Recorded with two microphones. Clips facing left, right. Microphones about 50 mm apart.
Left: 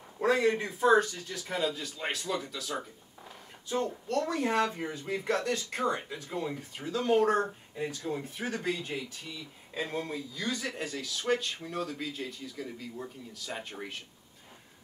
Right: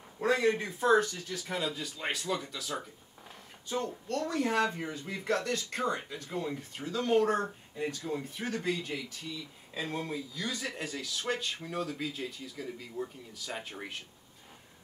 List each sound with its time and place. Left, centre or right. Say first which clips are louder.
0.2 s a man's voice: left 1 dB; centre
4.1 s speech: left 1 dB; centre
9.8 s a man's voice: left 1 dB; centre